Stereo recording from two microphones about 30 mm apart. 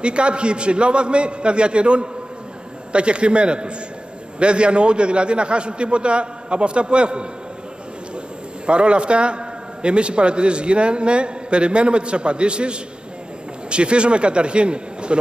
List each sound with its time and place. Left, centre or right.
0.0 s a man's voice: right
8.6 s a man's voice: right